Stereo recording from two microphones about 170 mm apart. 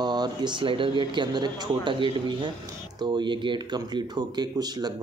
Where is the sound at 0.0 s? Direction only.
25° right (ahead or behind).